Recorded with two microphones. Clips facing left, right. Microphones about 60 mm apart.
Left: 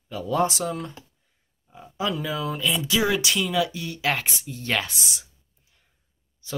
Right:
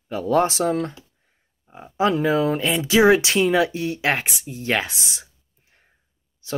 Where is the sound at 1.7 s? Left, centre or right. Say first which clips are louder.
Right 7 dB; right.